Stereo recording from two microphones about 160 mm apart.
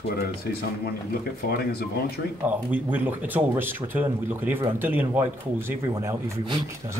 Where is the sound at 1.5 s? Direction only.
80° left.